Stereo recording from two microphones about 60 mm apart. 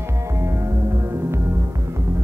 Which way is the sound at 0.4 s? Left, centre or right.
Right.